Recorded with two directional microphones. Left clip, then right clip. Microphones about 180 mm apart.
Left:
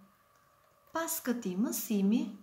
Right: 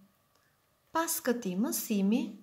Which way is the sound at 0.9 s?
45° right (ahead or behind).